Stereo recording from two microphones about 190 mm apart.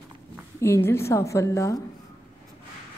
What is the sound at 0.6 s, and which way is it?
A woman's voice, 15° left (ahead or behind).